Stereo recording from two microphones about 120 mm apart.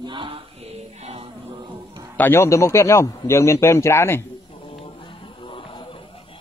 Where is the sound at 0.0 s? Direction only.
45° right (ahead or behind).